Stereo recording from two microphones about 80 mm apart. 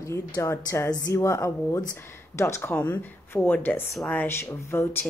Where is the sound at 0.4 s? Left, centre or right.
Left.